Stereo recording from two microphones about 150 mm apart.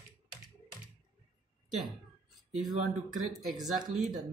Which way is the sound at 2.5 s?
Centre (ahead or behind).